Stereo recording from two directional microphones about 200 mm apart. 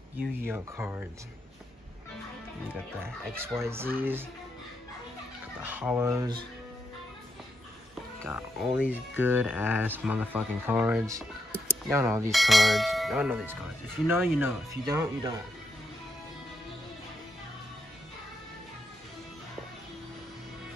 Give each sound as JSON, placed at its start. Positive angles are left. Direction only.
{"t": 0.5, "sound": "speech", "side_deg": -10}
{"t": 2.7, "sound": "speech", "side_deg": -10}
{"t": 5.6, "sound": "speech", "side_deg": -10}
{"t": 8.5, "sound": "speech", "side_deg": -10}
{"t": 12.3, "sound": "speech", "side_deg": 0}